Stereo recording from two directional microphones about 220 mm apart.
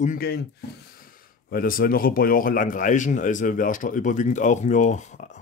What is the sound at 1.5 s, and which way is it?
Speech, 40° left (ahead or behind).